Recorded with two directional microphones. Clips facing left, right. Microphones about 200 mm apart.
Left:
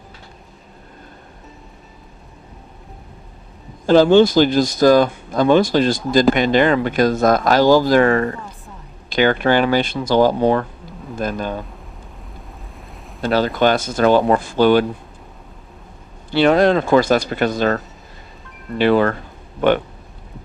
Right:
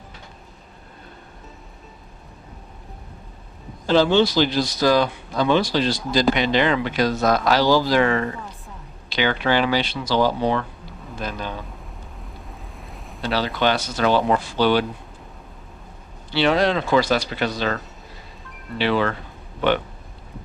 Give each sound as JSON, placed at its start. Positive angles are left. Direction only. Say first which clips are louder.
{"t": 3.8, "sound": "speech", "louder": "left 6 dB", "side_deg": 50}
{"t": 12.7, "sound": "a sound", "louder": "left 1 dB", "side_deg": 0}
{"t": 13.2, "sound": "speech", "louder": "left 6 dB", "side_deg": 50}
{"t": 16.3, "sound": "speech", "louder": "left 6 dB", "side_deg": 50}